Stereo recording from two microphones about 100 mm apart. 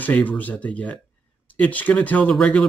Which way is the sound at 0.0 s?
15° left (ahead or behind).